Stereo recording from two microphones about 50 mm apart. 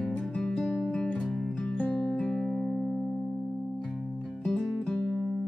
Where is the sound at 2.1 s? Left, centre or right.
Centre.